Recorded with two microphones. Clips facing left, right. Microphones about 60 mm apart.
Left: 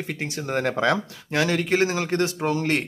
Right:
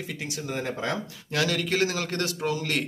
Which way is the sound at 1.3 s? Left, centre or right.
Left.